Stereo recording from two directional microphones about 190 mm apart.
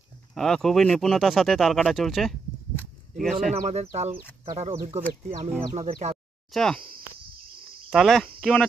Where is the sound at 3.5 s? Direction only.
35° right (ahead or behind).